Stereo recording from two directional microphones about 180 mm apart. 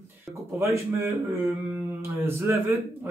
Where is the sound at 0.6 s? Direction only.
15° right (ahead or behind).